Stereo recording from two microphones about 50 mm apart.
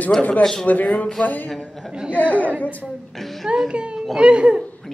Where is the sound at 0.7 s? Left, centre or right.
Left.